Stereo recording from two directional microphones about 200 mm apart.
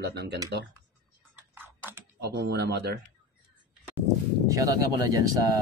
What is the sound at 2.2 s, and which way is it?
Speech, 55° right (ahead or behind).